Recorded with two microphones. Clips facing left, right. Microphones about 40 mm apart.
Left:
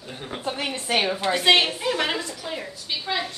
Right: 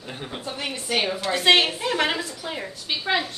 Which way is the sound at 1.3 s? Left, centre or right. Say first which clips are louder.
Right 1 dB; centre.